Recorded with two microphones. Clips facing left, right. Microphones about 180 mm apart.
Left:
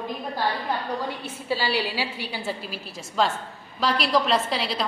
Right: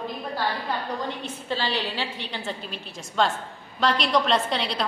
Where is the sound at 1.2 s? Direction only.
10° left (ahead or behind).